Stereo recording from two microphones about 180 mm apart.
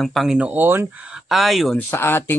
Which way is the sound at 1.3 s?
Centre (ahead or behind).